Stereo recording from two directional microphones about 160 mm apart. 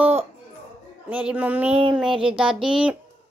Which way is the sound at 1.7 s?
35° right (ahead or behind).